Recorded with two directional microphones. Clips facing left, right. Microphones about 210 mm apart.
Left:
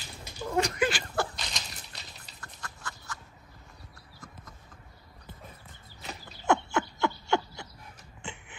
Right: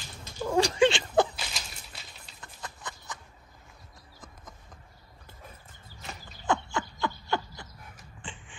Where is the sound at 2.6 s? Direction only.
20° right (ahead or behind).